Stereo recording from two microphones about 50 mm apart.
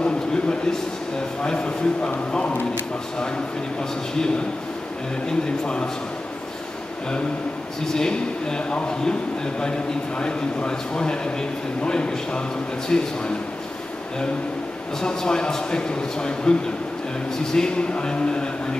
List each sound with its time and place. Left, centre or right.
0.0 s a sound: centre
1.4 s a man's voice: centre
7.9 s a man's voice: centre
15.0 s a man's voice: centre
17.6 s a man's voice: centre